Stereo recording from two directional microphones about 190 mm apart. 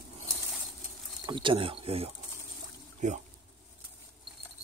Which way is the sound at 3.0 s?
40° right (ahead or behind).